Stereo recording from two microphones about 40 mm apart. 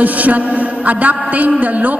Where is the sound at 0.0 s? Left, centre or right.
Right.